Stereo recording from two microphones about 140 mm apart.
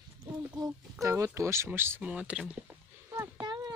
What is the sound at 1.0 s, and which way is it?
Speech, 20° right (ahead or behind).